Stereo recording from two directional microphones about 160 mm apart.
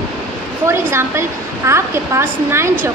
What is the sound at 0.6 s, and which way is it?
Speech, 15° right (ahead or behind).